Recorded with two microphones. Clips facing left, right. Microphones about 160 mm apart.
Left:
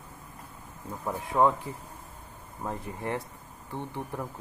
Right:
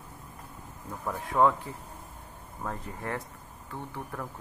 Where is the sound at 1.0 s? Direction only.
15° left (ahead or behind).